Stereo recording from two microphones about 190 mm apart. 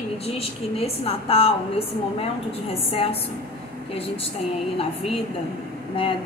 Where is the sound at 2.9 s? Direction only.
30° left (ahead or behind).